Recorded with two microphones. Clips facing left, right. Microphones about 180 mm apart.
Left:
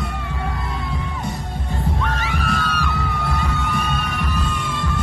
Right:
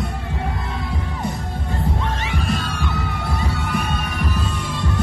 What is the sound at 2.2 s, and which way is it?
Music, 20° right (ahead or behind).